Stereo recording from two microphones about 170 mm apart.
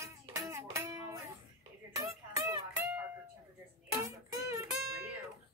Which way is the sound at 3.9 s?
20° right (ahead or behind).